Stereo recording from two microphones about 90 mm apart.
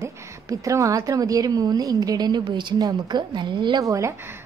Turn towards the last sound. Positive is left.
turn(degrees=-35)  # may be behind; listen again after turning